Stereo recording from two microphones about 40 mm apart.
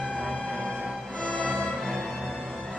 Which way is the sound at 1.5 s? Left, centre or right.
Centre.